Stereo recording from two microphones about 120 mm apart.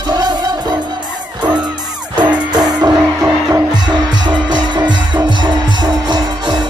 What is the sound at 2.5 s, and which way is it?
Music, 35° right (ahead or behind).